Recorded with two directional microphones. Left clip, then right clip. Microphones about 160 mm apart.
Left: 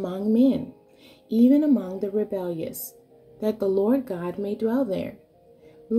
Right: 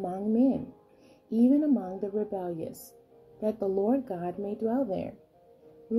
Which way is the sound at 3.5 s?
45° left (ahead or behind).